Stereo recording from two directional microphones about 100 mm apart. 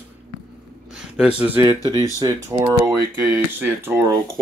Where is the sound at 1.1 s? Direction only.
15° right (ahead or behind).